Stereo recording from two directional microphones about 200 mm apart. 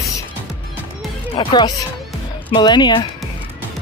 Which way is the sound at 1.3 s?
25° left (ahead or behind).